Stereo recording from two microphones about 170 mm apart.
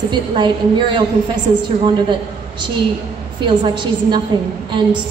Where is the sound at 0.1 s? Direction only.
25° right (ahead or behind).